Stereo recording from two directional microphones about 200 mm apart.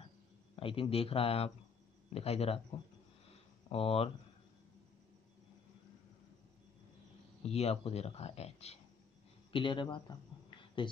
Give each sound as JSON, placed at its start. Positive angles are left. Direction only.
{"t": 0.6, "sound": "a man's voice", "side_deg": 25}
{"t": 3.7, "sound": "a man's voice", "side_deg": 30}
{"t": 7.4, "sound": "a man's voice", "side_deg": 30}